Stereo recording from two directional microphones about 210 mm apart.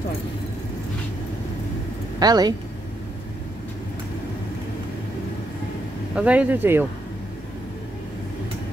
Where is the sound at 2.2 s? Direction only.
20° right (ahead or behind).